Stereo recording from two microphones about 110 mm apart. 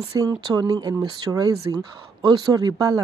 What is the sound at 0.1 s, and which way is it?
Speech, 35° right (ahead or behind).